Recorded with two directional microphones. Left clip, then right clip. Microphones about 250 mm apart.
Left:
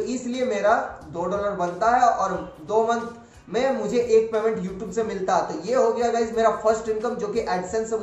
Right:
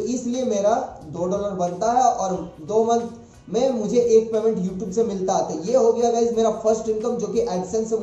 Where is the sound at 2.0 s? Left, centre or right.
Centre.